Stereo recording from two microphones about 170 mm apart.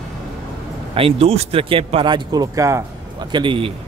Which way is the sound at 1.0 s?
35° right (ahead or behind).